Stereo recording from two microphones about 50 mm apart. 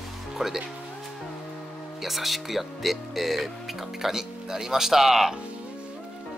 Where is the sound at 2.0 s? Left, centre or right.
Centre.